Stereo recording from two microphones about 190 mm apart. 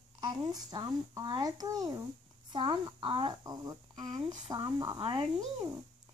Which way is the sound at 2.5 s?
25° right (ahead or behind).